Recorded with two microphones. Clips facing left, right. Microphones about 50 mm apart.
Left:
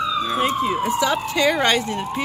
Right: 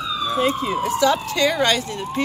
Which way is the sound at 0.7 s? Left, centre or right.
Centre.